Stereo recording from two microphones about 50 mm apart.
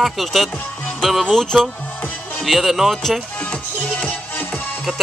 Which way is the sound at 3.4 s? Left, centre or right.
Left.